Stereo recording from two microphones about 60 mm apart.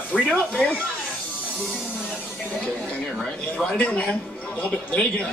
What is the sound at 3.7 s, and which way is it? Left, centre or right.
Speech, left.